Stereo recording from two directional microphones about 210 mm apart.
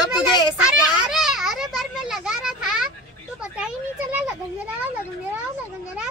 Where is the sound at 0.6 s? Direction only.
Centre (ahead or behind).